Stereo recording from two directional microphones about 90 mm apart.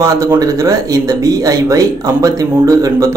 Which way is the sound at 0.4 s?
35° right (ahead or behind).